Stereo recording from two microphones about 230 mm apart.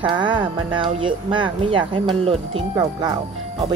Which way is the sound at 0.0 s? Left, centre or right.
Right.